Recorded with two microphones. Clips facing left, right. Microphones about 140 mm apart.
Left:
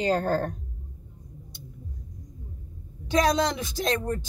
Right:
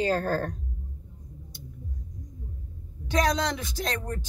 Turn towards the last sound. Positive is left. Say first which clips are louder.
# left 5 dB
turn(degrees=30)  # may be behind; listen again after turning